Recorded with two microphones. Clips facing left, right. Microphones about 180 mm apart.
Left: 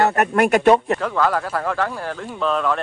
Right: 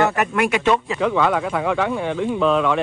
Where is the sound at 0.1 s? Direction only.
40° left (ahead or behind).